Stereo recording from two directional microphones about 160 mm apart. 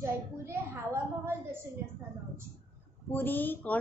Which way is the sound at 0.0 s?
15° right (ahead or behind).